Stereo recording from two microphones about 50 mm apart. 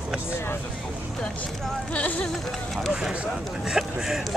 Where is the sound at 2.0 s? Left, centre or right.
Left.